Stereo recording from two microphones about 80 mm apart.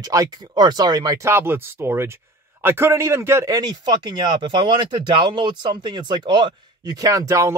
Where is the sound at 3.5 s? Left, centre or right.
Right.